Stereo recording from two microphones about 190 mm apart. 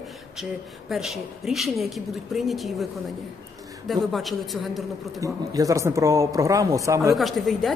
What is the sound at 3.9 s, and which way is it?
Speech, centre (ahead or behind).